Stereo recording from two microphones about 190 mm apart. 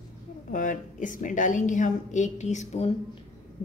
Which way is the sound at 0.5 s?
45° left (ahead or behind).